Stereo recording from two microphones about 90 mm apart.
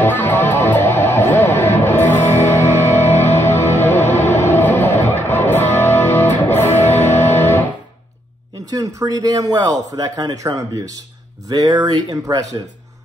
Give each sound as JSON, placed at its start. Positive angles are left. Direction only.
{"t": 0.0, "sound": "music", "side_deg": 25}
{"t": 8.6, "sound": "speech", "side_deg": -45}